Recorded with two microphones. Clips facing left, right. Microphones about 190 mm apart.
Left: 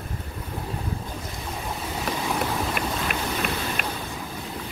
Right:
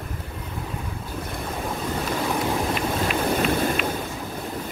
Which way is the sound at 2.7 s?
50° left (ahead or behind).